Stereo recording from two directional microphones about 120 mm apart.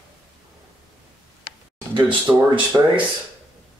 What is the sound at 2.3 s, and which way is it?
Speech, 20° right (ahead or behind).